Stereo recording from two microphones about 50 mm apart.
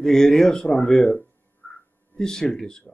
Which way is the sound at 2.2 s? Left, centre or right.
Centre.